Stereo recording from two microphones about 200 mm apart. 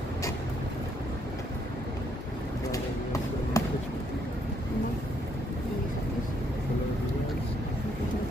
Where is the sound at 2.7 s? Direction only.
15° left (ahead or behind).